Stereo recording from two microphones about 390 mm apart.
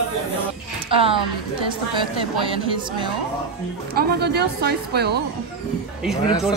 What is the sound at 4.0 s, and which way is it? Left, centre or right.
A woman's voice, right.